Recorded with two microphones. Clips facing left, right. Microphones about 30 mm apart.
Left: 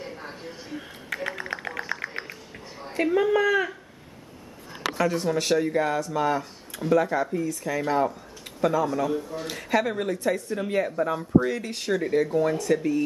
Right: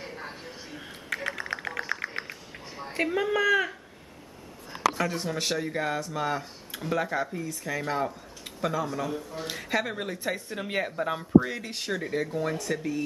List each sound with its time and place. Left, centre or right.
0.0 s a sound: centre
0.3 s music: centre
3.0 s speech: centre
4.9 s speech: centre
10.1 s speech: centre
11.0 s speech: right
11.3 s speech: centre